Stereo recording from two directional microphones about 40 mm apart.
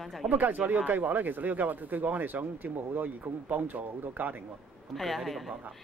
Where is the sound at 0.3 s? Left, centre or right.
Right.